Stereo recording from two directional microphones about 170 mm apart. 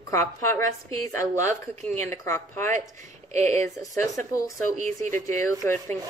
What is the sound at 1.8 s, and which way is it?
Speech, 15° left (ahead or behind).